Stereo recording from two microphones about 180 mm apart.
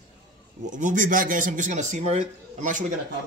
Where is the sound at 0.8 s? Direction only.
45° right (ahead or behind).